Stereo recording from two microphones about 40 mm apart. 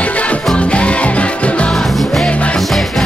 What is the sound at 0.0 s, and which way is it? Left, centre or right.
Music, left.